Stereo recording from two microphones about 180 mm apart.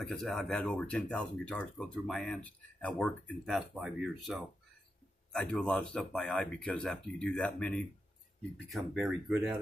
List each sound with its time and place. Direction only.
0.0 s speech: centre (ahead or behind)